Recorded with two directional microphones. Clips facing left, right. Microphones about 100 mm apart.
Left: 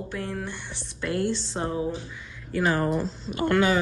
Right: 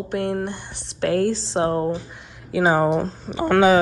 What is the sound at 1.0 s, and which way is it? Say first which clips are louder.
Speech: right 7 dB; 90° right.